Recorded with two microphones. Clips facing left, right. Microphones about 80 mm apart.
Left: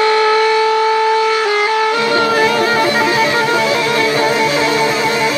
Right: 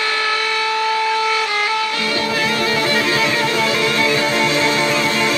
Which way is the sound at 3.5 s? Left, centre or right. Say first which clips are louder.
Left 4 dB; left.